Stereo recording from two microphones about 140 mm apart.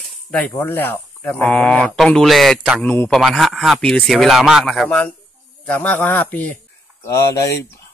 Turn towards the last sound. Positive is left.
turn(degrees=20)  # may be behind; listen again after turning